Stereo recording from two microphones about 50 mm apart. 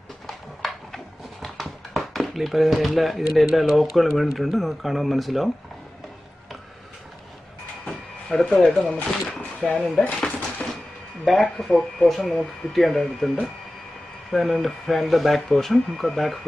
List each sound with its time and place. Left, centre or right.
0.3 s a sound: centre
8.5 s speech: left
8.8 s speech: centre
10.6 s music: left
11.2 s speech: centre
14.3 s speech: centre